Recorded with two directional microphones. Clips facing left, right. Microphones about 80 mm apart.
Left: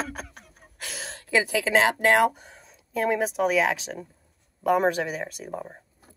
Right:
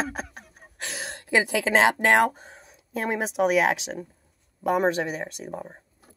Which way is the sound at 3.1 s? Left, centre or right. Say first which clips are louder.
Right 4 dB; centre.